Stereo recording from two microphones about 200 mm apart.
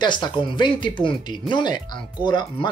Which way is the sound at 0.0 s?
20° left (ahead or behind).